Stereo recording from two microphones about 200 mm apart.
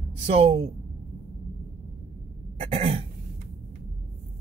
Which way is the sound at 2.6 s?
30° right (ahead or behind).